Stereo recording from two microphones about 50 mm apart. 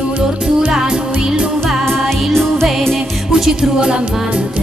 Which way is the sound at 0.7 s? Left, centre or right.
Centre.